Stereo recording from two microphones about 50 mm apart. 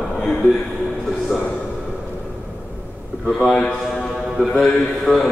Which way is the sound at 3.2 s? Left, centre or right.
Centre.